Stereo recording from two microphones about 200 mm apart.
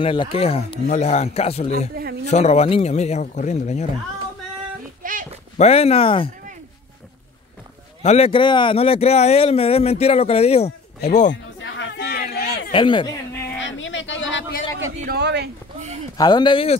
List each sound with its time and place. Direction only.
0.0 s speech: 25° left (ahead or behind)
5.0 s a sound: 40° right (ahead or behind)
5.6 s speech: 30° left (ahead or behind)
8.0 s speech: 30° left (ahead or behind)
11.8 s a sound: 55° left (ahead or behind)
12.7 s speech: 25° left (ahead or behind)
13.6 s a sound: 70° left (ahead or behind)
15.0 s speech: 55° right (ahead or behind)
16.2 s speech: 20° left (ahead or behind)